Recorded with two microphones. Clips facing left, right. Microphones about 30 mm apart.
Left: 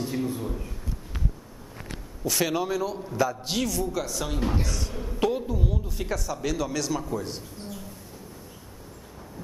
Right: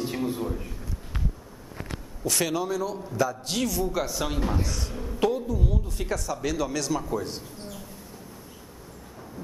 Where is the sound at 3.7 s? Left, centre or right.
Centre.